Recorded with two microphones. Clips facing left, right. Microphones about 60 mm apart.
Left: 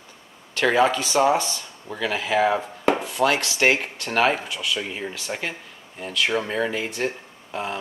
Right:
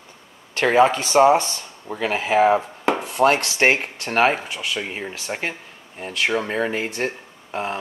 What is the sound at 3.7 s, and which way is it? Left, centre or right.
Speech, right.